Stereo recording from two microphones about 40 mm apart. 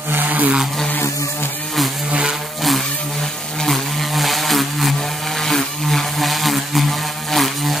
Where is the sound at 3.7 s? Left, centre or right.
Centre.